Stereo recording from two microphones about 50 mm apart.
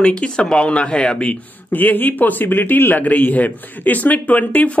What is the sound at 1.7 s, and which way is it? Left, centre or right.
A man's voice, left.